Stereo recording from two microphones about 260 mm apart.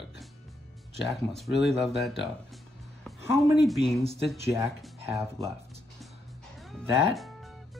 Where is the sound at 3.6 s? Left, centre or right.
Centre.